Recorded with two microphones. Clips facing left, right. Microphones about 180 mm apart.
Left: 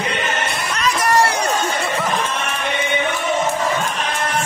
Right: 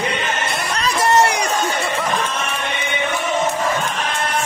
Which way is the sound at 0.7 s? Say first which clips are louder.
Right 1 dB; 30° right (ahead or behind).